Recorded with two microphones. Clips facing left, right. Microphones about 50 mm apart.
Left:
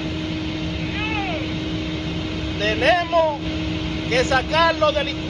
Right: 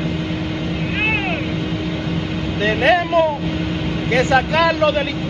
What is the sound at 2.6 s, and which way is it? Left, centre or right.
Speech, right.